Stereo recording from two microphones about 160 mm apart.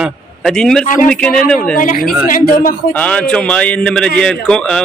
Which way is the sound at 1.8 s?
55° left (ahead or behind).